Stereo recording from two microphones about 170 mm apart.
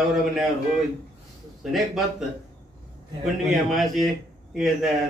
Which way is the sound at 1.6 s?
Centre (ahead or behind).